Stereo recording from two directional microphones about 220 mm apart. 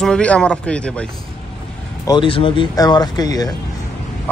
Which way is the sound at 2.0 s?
20° left (ahead or behind).